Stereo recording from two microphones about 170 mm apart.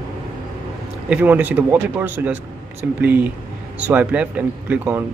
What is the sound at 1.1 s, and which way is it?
Speech, 10° right (ahead or behind).